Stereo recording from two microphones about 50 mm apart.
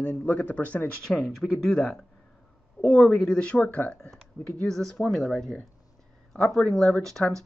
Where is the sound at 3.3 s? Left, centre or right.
Left.